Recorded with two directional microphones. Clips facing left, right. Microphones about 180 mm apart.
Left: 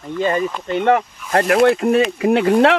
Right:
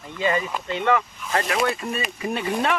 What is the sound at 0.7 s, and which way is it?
Speech, 50° left (ahead or behind).